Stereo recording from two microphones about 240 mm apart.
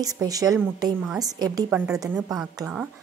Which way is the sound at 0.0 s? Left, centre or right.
Centre.